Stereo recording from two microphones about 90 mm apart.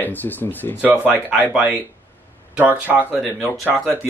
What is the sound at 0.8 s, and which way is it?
Speech, 15° right (ahead or behind).